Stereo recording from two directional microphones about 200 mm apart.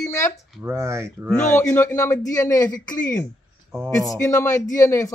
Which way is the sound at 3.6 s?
10° right (ahead or behind).